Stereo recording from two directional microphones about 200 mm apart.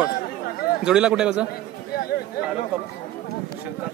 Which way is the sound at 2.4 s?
50° left (ahead or behind).